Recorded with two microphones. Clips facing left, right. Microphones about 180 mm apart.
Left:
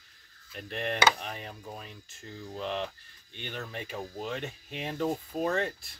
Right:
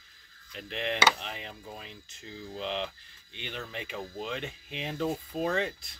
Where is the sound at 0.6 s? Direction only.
50° left (ahead or behind).